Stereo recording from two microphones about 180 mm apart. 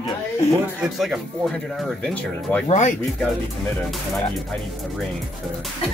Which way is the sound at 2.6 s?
45° left (ahead or behind).